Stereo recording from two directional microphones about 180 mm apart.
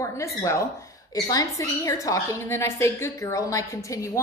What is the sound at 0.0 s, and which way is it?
A woman's voice, 15° left (ahead or behind).